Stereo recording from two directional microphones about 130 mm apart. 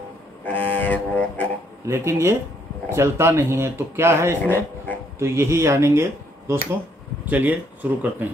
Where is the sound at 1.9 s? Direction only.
20° right (ahead or behind).